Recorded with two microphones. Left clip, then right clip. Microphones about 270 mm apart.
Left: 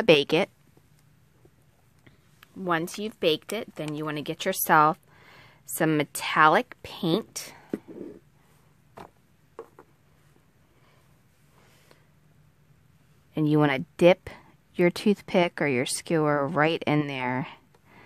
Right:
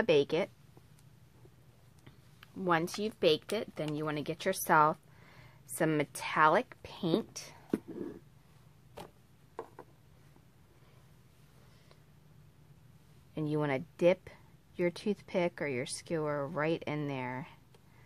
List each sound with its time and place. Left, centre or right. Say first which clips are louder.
0.0 s speech: left 8 dB; left
2.0 s speech: left 3 dB; left
13.3 s speech: left 10 dB; left